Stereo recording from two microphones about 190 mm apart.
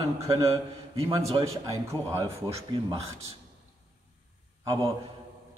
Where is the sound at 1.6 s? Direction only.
15° right (ahead or behind).